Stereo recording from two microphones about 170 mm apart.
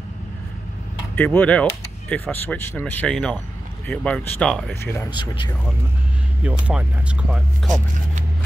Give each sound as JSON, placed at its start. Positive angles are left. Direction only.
{"t": 1.1, "sound": "speech", "side_deg": 10}
{"t": 4.9, "sound": "speech", "side_deg": 20}
{"t": 6.4, "sound": "speech", "side_deg": -5}